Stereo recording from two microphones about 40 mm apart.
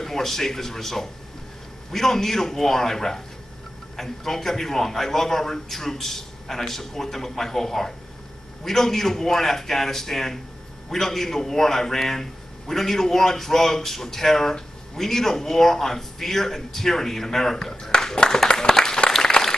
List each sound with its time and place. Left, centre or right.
0.0 s speech: centre
18.5 s applause: centre